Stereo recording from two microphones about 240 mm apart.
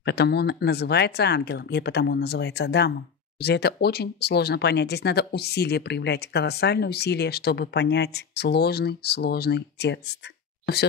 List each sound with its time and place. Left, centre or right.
0.0 s speech: left